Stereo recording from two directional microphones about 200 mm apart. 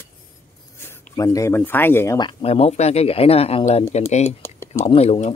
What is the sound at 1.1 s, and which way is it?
Speech, 15° left (ahead or behind).